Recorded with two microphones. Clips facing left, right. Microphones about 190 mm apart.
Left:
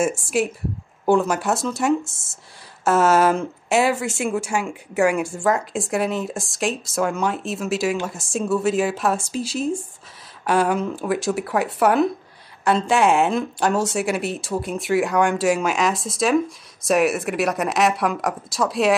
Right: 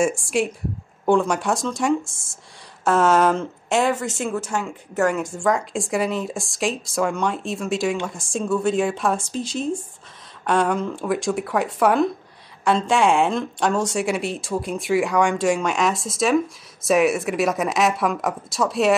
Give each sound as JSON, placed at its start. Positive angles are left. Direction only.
{"t": 0.0, "sound": "a woman's voice", "side_deg": 0}